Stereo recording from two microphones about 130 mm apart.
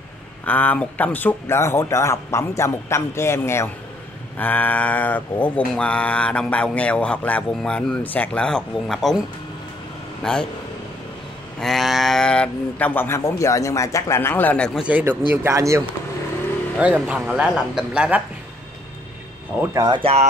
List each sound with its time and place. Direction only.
0.5 s speech: 10° left (ahead or behind)
4.4 s music: 15° left (ahead or behind)
10.2 s speech: 5° left (ahead or behind)
11.6 s music: centre (ahead or behind)
14.8 s speech: 10° right (ahead or behind)
16.7 s speech: 10° right (ahead or behind)
19.7 s speech: 25° right (ahead or behind)
20.0 s speech: 50° right (ahead or behind)